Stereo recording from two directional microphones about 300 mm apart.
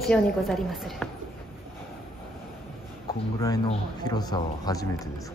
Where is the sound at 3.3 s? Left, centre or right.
Centre.